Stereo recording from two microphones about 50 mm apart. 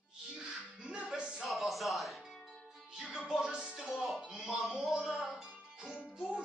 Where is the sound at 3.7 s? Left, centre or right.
Centre.